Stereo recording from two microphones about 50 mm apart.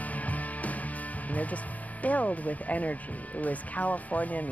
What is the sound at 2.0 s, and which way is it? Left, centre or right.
Speech, left.